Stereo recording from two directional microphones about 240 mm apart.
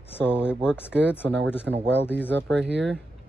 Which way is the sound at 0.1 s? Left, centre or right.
Centre.